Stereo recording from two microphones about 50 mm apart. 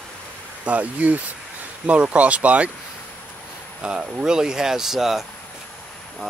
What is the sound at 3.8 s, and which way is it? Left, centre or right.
Speech, centre.